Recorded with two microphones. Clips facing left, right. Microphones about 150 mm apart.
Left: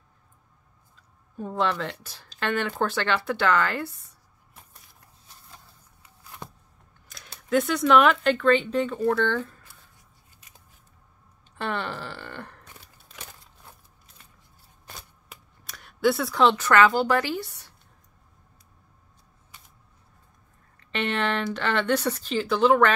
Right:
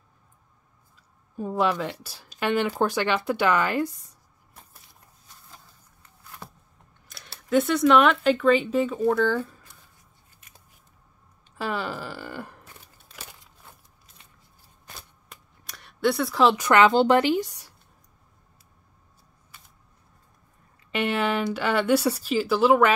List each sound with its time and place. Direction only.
1.3 s speech: 10° right (ahead or behind)
6.4 s a sound: 20° left (ahead or behind)
7.1 s speech: centre (ahead or behind)
11.5 s a sound: 5° right (ahead or behind)
15.0 s shuffling cards: centre (ahead or behind)
16.5 s speech: 15° right (ahead or behind)
20.9 s speech: 10° right (ahead or behind)